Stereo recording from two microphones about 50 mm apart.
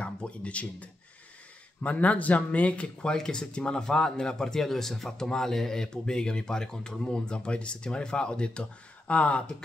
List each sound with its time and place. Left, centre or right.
0.0 s a man's voice: left